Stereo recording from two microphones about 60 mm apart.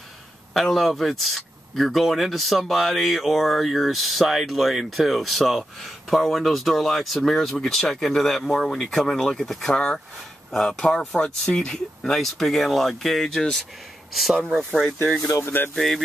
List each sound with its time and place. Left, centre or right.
0.6 s speech: centre
15.3 s speech: left
15.7 s speech: centre